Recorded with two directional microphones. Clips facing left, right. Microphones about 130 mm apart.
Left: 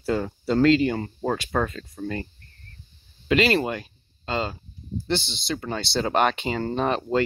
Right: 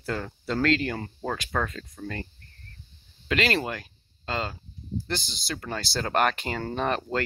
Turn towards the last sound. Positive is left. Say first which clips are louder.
# left 4 dB
turn(degrees=0)  # may be behind; listen again after turning